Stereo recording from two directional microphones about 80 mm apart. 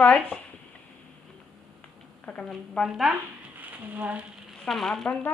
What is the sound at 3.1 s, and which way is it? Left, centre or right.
Speech, right.